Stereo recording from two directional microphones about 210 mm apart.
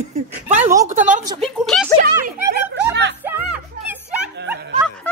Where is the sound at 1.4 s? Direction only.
Centre (ahead or behind).